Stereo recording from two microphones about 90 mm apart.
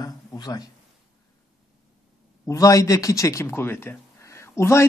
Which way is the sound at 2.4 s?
35° left (ahead or behind).